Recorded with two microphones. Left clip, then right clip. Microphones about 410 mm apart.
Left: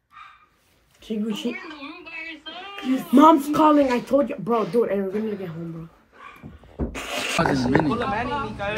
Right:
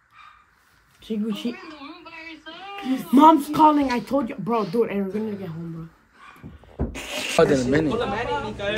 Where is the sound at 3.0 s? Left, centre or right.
Right.